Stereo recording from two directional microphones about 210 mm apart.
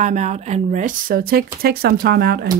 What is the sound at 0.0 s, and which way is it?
Speech, 35° right (ahead or behind).